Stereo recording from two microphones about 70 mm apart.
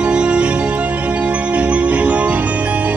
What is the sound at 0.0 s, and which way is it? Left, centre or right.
Music, centre.